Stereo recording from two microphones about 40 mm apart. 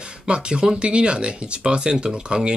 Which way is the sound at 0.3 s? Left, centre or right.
Right.